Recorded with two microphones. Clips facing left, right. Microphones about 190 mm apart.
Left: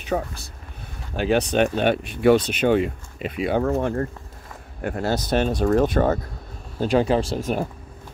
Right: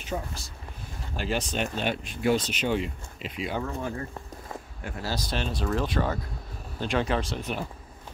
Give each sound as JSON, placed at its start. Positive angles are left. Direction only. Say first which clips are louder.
{"t": 0.0, "sound": "speech", "louder": "left 8 dB", "side_deg": 60}
{"t": 6.8, "sound": "speech", "louder": "left 8 dB", "side_deg": 35}